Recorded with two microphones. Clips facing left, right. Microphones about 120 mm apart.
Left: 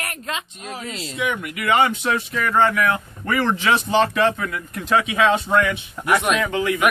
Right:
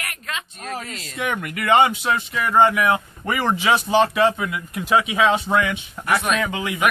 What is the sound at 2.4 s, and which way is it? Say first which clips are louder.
A man's voice: right 2 dB; 15° right (ahead or behind).